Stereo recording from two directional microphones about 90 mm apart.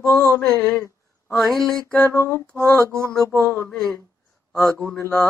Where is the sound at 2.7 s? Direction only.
30° right (ahead or behind).